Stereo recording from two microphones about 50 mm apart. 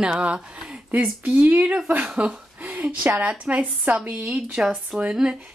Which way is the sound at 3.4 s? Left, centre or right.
Right.